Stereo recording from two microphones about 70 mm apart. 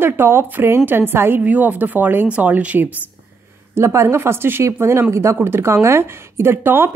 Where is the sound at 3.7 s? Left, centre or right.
Right.